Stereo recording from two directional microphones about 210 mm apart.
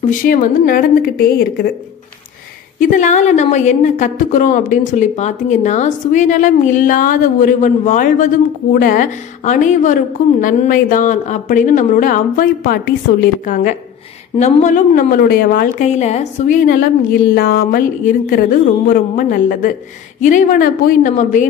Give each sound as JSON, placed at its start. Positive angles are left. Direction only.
{"t": 0.0, "sound": "a woman's voice", "side_deg": 40}
{"t": 2.8, "sound": "a woman's voice", "side_deg": 40}